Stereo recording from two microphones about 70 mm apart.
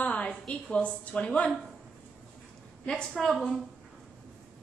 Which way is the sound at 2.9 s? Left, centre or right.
Centre.